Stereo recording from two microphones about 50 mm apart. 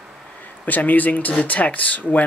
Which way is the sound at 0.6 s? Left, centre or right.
Left.